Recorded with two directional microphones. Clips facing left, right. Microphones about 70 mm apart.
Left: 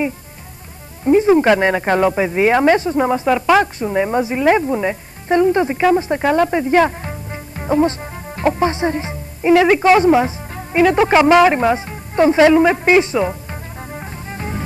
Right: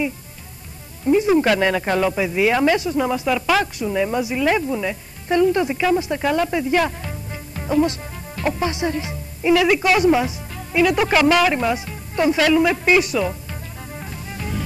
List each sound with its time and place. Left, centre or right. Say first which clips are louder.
1.0 s speech: left 4 dB; left